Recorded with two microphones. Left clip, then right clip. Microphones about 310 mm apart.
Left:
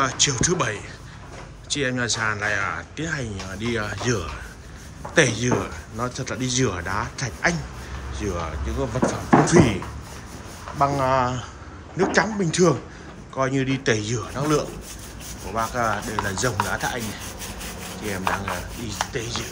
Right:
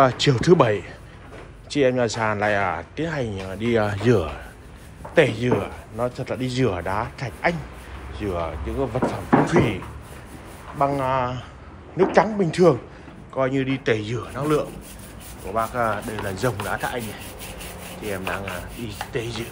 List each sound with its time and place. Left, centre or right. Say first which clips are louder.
0.0 s speech: right 3 dB; centre
10.8 s speech: left 1 dB; centre
18.9 s speech: left 1 dB; centre